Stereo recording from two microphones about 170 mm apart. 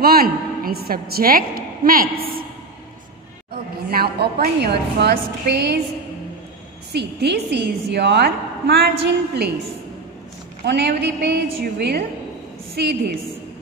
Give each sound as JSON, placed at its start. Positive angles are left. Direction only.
{"t": 0.0, "sound": "a woman's voice", "side_deg": -60}
{"t": 3.9, "sound": "a woman's voice", "side_deg": -65}
{"t": 6.9, "sound": "a woman's voice", "side_deg": -75}
{"t": 10.6, "sound": "a woman's voice", "side_deg": -75}